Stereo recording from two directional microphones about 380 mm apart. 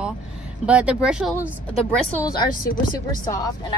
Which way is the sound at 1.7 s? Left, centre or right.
Centre.